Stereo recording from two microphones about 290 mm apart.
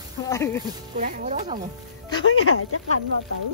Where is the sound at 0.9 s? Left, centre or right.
Right.